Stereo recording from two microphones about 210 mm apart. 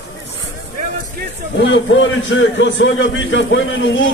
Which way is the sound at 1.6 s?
60° left (ahead or behind).